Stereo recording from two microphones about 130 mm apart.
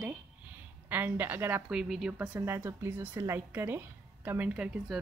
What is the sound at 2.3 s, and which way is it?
A woman's voice, 15° right (ahead or behind).